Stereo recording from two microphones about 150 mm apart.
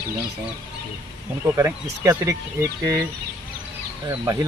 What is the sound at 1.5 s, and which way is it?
Speech, 15° right (ahead or behind).